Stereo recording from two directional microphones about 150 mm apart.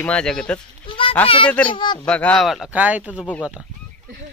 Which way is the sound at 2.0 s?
5° left (ahead or behind).